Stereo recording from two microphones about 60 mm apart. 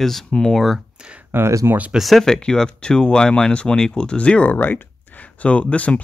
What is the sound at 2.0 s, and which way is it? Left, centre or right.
Speech, centre.